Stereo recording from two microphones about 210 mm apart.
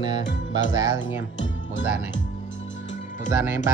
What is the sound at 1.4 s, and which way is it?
Music, 60° left (ahead or behind).